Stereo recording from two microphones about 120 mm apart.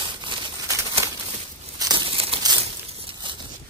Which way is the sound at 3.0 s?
40° right (ahead or behind).